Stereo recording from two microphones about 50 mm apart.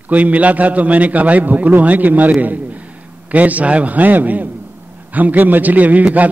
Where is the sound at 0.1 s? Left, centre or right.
Right.